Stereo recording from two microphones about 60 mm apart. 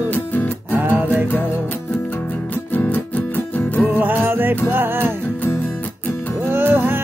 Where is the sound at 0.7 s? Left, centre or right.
Right.